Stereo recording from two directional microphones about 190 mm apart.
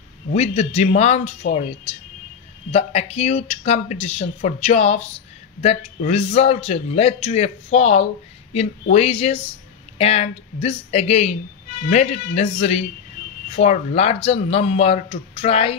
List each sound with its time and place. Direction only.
0.3 s speech: 35° left (ahead or behind)